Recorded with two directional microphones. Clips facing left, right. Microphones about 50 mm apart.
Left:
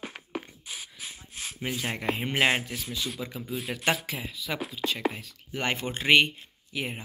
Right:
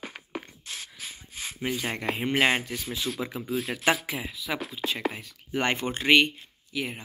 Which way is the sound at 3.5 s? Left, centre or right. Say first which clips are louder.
Right 3 dB; centre.